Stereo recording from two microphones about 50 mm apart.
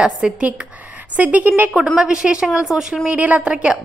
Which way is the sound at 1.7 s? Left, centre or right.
Centre.